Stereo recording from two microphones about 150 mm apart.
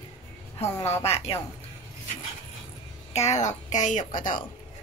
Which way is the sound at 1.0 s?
40° left (ahead or behind).